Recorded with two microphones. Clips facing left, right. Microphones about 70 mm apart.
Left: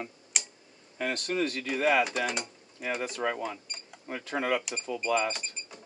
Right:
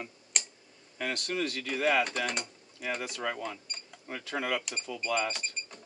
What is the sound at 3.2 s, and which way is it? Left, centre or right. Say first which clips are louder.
Speech: left 3 dB; centre.